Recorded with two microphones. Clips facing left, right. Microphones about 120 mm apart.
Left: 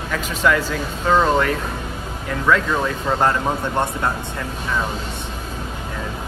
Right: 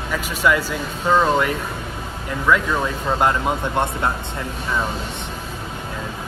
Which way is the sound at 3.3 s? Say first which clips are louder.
Even; 15° right (ahead or behind).